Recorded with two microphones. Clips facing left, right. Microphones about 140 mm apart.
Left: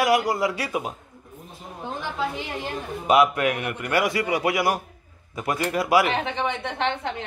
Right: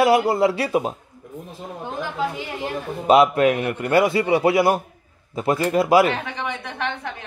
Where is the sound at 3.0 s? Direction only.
30° right (ahead or behind).